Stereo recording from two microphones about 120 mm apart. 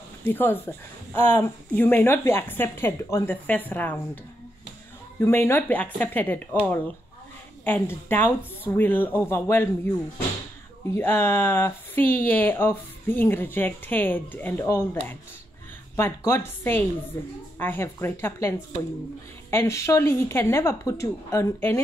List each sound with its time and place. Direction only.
0.2 s speech: 15° left (ahead or behind)
5.2 s speech: 20° left (ahead or behind)
7.6 s speech: 15° left (ahead or behind)
10.9 s speech: 20° left (ahead or behind)
16.0 s speech: 20° left (ahead or behind)
19.5 s speech: 25° left (ahead or behind)